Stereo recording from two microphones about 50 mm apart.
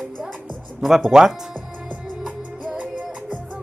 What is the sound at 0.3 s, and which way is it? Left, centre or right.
Music, centre.